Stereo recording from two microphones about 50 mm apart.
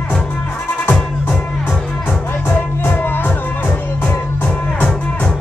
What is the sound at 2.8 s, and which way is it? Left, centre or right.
Music, left.